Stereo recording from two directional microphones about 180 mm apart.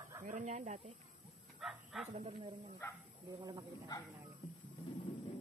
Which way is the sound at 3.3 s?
20° right (ahead or behind).